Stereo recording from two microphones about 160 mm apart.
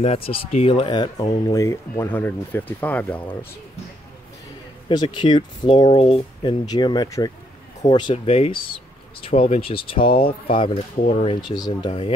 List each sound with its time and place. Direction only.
0.0 s speech: 35° left (ahead or behind); by 3.3 s 10° left (ahead or behind)
4.8 s speech: 30° left (ahead or behind)
5.9 s speech: 40° left (ahead or behind)
6.6 s speech: 25° left (ahead or behind)
11.4 s speech: 25° left (ahead or behind)